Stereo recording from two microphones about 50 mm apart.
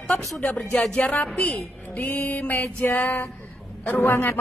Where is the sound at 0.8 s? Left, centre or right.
Left.